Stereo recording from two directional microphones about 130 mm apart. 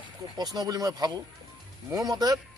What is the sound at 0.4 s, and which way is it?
Speech, 30° right (ahead or behind).